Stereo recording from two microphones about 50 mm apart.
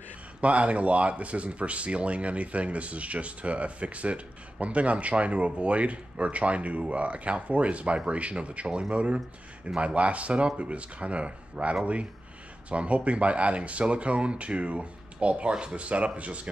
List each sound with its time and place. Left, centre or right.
0.4 s speech: right